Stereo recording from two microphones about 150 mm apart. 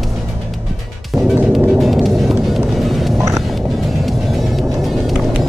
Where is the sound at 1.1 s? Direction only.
20° right (ahead or behind).